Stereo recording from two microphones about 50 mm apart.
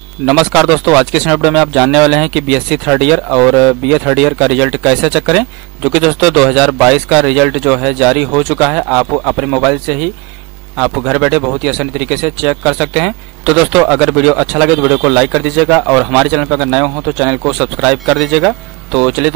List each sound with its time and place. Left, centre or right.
0.3 s speech: centre